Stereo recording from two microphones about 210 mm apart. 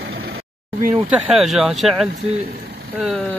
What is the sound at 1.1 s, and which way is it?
Speech, centre (ahead or behind).